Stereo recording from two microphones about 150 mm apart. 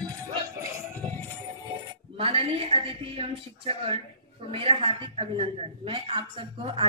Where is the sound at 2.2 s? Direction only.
40° right (ahead or behind).